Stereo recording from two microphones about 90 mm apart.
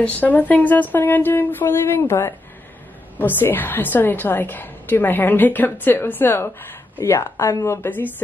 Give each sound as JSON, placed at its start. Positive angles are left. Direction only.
{"t": 0.0, "sound": "a woman's voice", "side_deg": 15}